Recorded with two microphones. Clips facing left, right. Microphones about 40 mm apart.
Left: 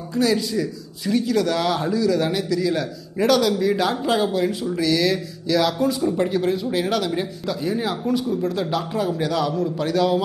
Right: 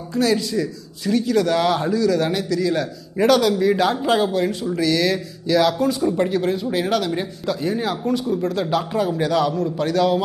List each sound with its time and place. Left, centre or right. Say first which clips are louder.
0.1 s a man's voice: right 1 dB; centre